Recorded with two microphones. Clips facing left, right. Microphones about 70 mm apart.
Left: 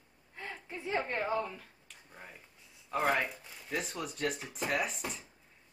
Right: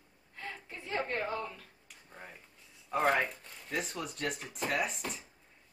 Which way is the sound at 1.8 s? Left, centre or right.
Centre.